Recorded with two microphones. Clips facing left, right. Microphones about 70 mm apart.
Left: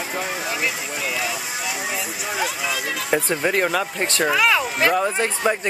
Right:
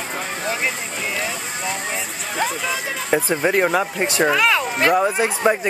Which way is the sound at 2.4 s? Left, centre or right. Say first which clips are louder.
Right 3 dB; centre.